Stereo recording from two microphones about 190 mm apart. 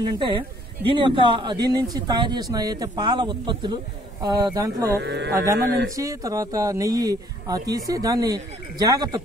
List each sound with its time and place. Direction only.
0.0 s speech: 25° right (ahead or behind)
5.0 s speech: 65° right (ahead or behind)
5.9 s speech: 15° right (ahead or behind)